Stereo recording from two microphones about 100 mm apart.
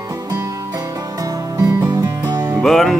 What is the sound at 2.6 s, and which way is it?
Music, centre (ahead or behind).